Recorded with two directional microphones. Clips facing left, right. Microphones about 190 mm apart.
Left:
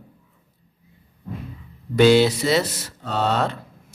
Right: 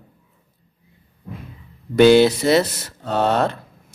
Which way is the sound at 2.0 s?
55° right (ahead or behind).